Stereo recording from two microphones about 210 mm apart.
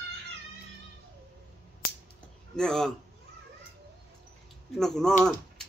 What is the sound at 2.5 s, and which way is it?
Speech, 5° left (ahead or behind).